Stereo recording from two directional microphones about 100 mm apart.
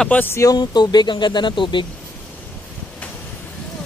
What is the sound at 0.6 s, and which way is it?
Speech, 45° left (ahead or behind).